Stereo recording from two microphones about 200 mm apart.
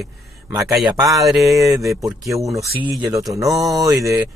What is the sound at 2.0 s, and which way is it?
Speech, 15° right (ahead or behind).